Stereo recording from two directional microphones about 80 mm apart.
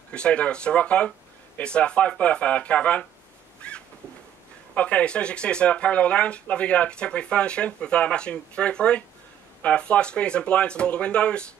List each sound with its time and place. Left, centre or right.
0.1 s speech: centre
3.6 s a sound: centre
4.7 s speech: centre